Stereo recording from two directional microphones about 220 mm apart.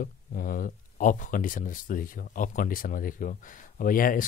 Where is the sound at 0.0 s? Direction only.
40° left (ahead or behind).